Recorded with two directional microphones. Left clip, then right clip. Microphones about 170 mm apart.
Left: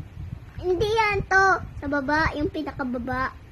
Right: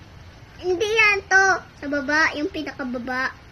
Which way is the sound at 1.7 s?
15° right (ahead or behind).